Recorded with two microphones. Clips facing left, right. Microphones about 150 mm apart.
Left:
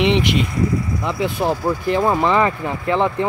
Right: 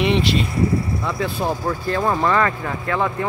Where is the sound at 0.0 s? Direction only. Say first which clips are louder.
Left 2 dB; 20° left (ahead or behind).